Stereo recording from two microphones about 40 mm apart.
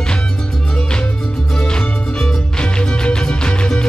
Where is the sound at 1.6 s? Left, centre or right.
Centre.